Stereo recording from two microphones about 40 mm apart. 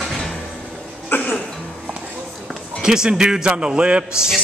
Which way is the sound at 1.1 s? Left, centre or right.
Left.